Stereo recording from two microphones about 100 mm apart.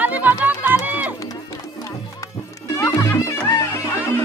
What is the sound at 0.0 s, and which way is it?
Music, 15° right (ahead or behind).